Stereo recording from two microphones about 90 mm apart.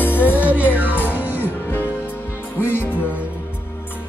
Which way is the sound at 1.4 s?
20° left (ahead or behind).